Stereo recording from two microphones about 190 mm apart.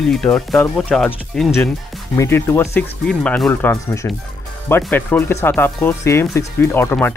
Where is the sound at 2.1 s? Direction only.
15° left (ahead or behind).